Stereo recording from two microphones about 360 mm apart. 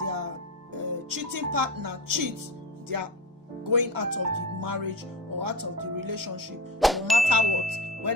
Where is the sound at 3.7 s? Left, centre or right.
Right.